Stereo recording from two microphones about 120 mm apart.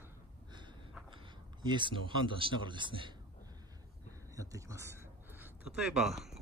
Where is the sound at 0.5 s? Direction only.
40° right (ahead or behind).